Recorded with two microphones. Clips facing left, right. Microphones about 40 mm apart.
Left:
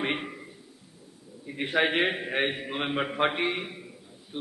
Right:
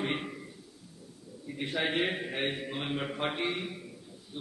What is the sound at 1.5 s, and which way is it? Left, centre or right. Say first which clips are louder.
A man's voice: left 6 dB; left.